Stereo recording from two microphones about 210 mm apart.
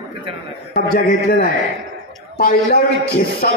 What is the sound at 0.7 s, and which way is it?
A man's voice, 45° left (ahead or behind).